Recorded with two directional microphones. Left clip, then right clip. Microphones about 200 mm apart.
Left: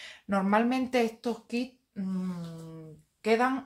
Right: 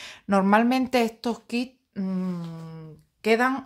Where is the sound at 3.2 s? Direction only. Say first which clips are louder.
Right 4 dB; 45° right (ahead or behind).